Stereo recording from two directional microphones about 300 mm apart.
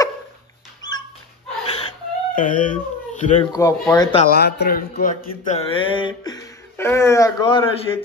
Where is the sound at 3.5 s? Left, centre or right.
Centre.